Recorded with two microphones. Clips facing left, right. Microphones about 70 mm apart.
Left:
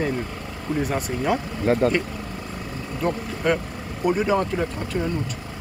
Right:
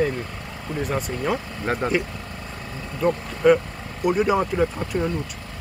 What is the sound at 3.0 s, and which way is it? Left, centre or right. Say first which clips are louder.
Vehicle: right 5 dB; centre.